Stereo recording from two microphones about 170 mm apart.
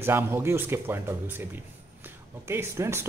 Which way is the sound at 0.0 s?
15° right (ahead or behind).